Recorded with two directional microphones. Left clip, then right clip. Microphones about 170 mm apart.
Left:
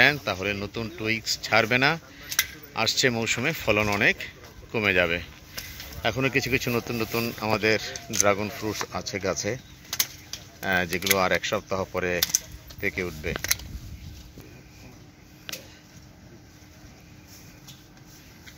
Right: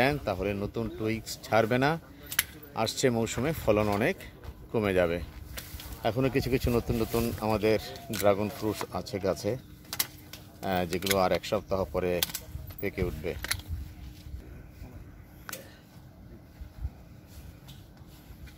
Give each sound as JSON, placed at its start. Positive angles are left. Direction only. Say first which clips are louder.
{"t": 0.0, "sound": "speech", "louder": "left 6 dB", "side_deg": -15}
{"t": 10.6, "sound": "speech", "louder": "left 5 dB", "side_deg": -5}